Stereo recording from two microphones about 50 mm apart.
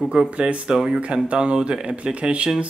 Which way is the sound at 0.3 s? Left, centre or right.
Right.